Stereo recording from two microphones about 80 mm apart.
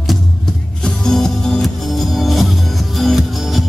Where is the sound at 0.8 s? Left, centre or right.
Centre.